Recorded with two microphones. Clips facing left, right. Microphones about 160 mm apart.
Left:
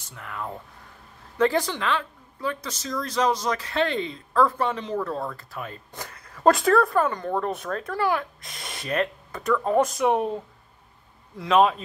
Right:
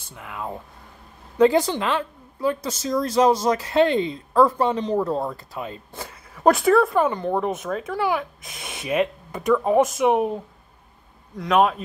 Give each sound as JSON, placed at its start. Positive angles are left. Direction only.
{"t": 0.1, "sound": "speech", "side_deg": -15}
{"t": 1.9, "sound": "speech", "side_deg": -35}
{"t": 4.7, "sound": "speech", "side_deg": -30}
{"t": 5.9, "sound": "a sound", "side_deg": -5}
{"t": 7.0, "sound": "a man's voice", "side_deg": -10}